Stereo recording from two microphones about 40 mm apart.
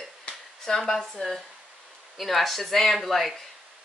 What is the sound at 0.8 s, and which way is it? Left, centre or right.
Speech, centre.